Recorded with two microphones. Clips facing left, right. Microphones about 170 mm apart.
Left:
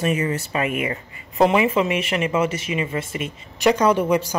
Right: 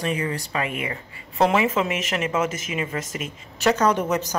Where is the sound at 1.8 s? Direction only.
45° right (ahead or behind).